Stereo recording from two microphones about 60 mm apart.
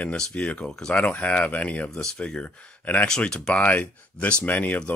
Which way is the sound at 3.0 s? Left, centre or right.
Centre.